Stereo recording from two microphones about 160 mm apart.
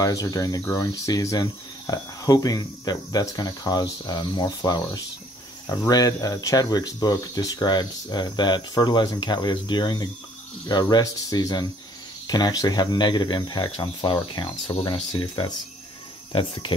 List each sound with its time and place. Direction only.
0.0 s speech: 20° left (ahead or behind)